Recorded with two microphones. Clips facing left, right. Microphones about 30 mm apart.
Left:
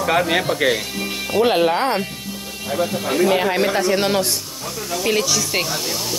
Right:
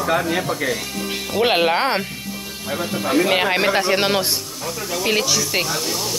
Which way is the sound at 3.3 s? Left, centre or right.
Right.